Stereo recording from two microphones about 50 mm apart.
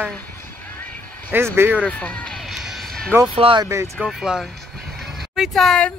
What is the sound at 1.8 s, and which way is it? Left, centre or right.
Speech, left.